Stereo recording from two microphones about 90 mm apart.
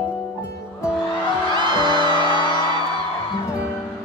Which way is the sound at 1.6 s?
55° right (ahead or behind).